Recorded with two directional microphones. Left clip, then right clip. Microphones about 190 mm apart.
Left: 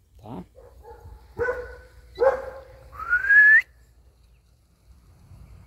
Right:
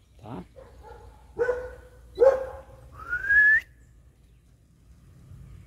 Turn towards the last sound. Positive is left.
turn(degrees=-15)  # may be behind; listen again after turning